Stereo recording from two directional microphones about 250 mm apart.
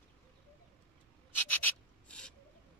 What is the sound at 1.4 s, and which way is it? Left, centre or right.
Rub, centre.